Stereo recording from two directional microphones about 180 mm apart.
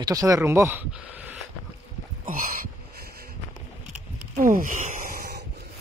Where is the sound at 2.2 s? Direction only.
50° right (ahead or behind).